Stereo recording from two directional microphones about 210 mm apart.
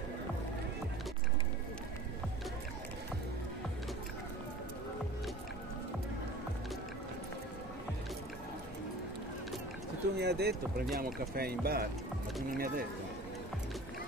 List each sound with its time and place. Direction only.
10.1 s speech: 50° right (ahead or behind)